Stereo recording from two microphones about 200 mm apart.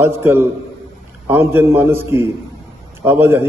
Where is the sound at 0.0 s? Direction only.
10° right (ahead or behind).